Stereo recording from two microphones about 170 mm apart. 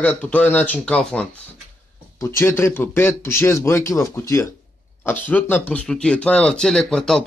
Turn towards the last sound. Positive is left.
turn(degrees=5)  # may be behind; listen again after turning